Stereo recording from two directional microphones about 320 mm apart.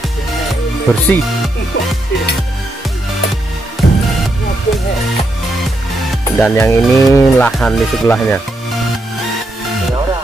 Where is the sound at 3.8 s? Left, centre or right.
Left.